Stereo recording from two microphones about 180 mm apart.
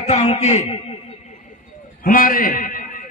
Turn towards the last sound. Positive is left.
turn(degrees=50)  # may be behind; listen again after turning